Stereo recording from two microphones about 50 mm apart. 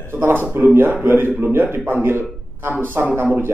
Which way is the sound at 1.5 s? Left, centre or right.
Right.